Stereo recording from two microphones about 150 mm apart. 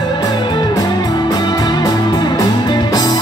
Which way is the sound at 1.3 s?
25° left (ahead or behind).